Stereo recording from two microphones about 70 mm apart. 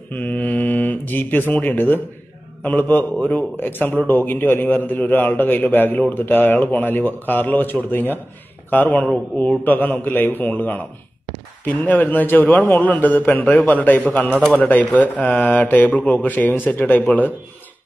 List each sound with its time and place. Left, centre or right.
0.1 s mantra: left
2.6 s a man's voice: left
14.4 s speech: centre
15.0 s a man's voice: left